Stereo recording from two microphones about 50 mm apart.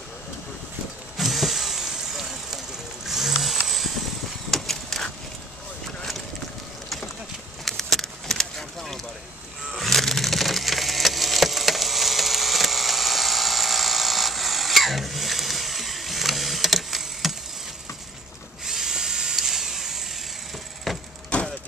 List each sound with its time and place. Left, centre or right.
1.1 s vehicle: centre
3.1 s a sound: centre
4.5 s vehicle: centre
7.6 s vehicle: centre
9.7 s splinter: centre
18.7 s drill: centre
20.9 s vehicle: centre
21.3 s a sound: left